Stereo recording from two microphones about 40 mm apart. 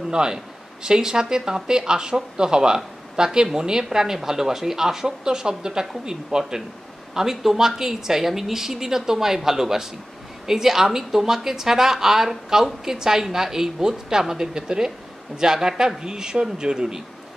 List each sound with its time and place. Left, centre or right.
0.1 s a man's voice: right